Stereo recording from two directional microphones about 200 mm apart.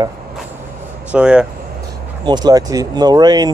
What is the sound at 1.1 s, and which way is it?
Speech, 5° right (ahead or behind).